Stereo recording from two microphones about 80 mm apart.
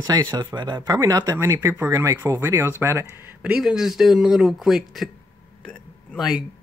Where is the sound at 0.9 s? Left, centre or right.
Right.